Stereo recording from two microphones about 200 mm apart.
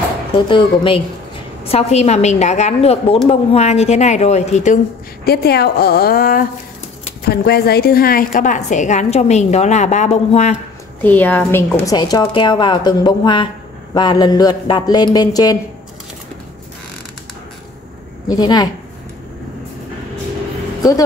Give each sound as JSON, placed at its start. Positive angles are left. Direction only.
{"t": 0.3, "sound": "a woman's voice", "side_deg": 25}
{"t": 5.2, "sound": "a woman's voice", "side_deg": 50}
{"t": 11.0, "sound": "a woman's voice", "side_deg": 10}
{"t": 18.3, "sound": "a woman's voice", "side_deg": 20}